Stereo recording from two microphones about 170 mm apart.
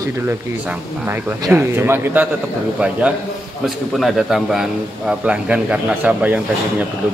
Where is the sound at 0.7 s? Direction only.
10° right (ahead or behind).